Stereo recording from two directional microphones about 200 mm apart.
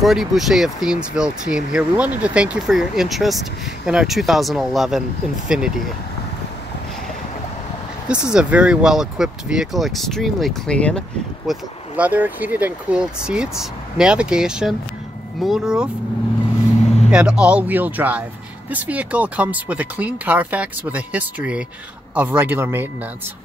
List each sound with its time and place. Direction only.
0.0 s speech: centre (ahead or behind)
8.1 s speech: 5° right (ahead or behind)
12.0 s speech: 10° right (ahead or behind)
16.8 s vehicle: 35° left (ahead or behind)
17.1 s speech: 5° right (ahead or behind)